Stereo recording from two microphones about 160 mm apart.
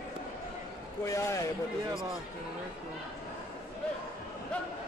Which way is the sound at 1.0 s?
20° left (ahead or behind).